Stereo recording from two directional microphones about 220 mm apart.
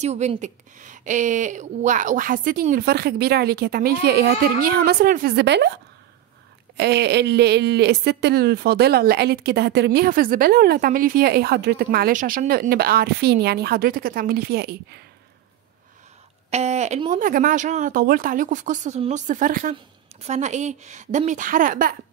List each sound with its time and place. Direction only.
0.0 s speech: 30° right (ahead or behind); by 5.7 s 50° right (ahead or behind)
6.8 s speech: 50° right (ahead or behind)
16.4 s speech: 30° right (ahead or behind)